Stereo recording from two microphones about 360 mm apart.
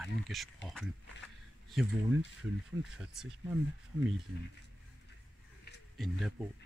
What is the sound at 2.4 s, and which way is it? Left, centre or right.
Speech, centre.